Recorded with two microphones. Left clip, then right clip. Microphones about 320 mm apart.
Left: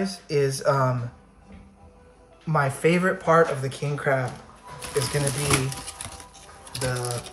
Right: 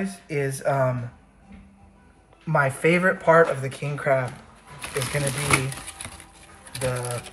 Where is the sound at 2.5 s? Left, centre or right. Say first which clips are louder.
Right 2 dB; centre.